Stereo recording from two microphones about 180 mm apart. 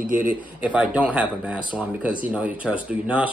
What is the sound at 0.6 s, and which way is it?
Speech, 5° right (ahead or behind).